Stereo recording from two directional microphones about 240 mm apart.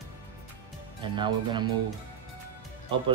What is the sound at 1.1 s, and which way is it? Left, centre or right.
Speech, centre.